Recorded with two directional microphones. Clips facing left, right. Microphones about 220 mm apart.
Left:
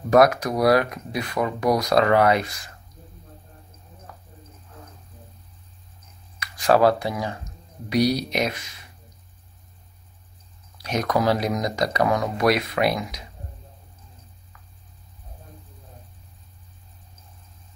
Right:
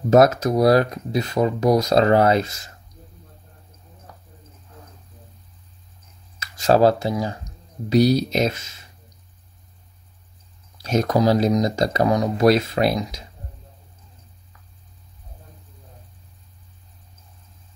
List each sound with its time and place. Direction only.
0.1 s speech: 25° right (ahead or behind)
6.4 s speech: 25° right (ahead or behind)
10.8 s speech: 25° right (ahead or behind)